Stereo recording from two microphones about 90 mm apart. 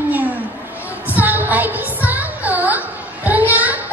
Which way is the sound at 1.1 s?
20° right (ahead or behind).